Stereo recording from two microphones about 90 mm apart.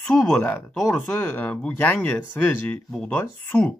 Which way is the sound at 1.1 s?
20° left (ahead or behind).